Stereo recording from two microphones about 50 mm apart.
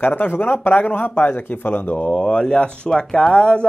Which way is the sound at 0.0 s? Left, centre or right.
Left.